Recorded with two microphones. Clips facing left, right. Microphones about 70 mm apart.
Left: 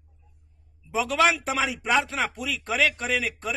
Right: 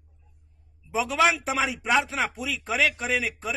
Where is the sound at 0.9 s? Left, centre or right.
Centre.